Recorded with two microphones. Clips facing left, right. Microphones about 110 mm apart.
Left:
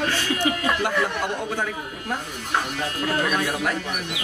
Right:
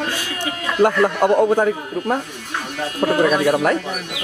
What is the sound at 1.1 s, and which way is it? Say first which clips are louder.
A man's voice: right 12 dB; 45° right (ahead or behind).